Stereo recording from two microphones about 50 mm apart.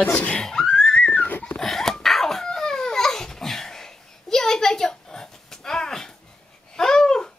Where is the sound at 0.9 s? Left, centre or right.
Left.